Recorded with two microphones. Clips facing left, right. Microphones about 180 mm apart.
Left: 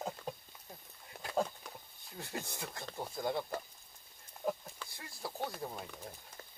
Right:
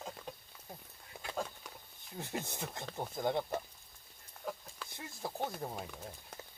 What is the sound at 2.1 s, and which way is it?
Speech, 20° right (ahead or behind).